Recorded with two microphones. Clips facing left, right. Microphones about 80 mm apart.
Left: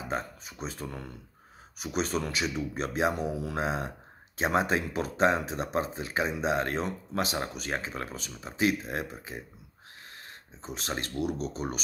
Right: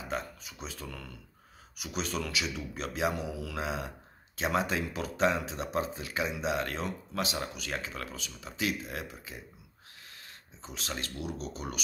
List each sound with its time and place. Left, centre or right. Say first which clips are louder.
0.1 s speech: left 2 dB; left